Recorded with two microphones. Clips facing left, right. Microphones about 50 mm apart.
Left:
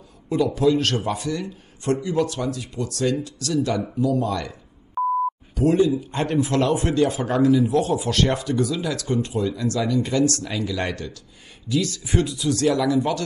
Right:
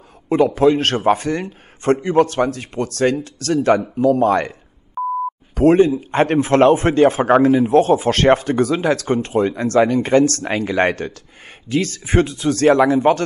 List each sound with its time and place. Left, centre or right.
0.6 s a man's voice: right
5.0 s sidetone: centre
5.5 s a man's voice: right